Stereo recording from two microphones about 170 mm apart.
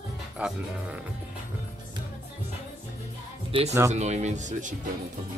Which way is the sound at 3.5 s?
35° right (ahead or behind).